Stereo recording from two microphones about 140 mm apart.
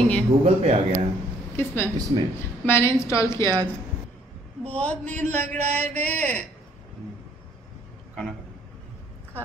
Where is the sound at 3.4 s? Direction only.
30° right (ahead or behind).